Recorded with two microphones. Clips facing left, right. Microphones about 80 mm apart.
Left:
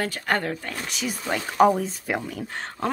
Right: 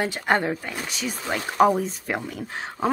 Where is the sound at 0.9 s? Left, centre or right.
Centre.